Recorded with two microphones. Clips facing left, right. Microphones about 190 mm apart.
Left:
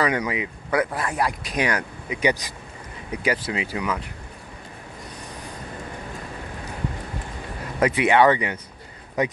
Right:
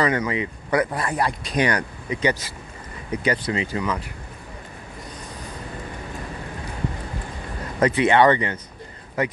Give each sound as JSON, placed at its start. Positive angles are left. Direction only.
{"t": 0.0, "sound": "speech", "side_deg": 10}
{"t": 2.2, "sound": "speech", "side_deg": 15}
{"t": 7.8, "sound": "speech", "side_deg": 10}